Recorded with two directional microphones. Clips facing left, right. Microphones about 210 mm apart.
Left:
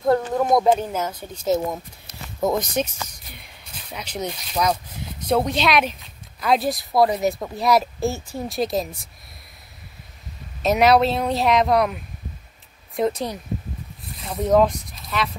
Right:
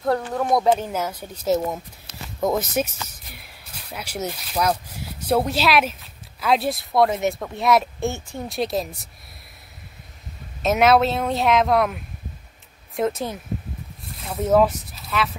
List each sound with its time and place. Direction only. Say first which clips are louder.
0.0 s speech: left 3 dB; 20° left (ahead or behind)
0.9 s a woman's voice: even; 10° right (ahead or behind)
10.6 s a woman's voice: left 1 dB; centre (ahead or behind)